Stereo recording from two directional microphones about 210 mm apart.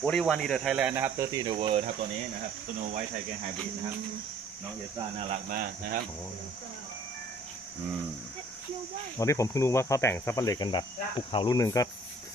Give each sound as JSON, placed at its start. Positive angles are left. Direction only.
{"t": 0.0, "sound": "speech", "side_deg": 5}
{"t": 5.3, "sound": "speech", "side_deg": -45}
{"t": 9.2, "sound": "speech", "side_deg": 15}